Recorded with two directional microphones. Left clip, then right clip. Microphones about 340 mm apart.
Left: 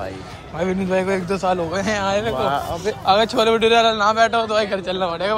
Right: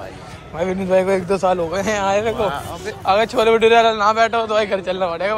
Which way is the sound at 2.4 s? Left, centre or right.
Left.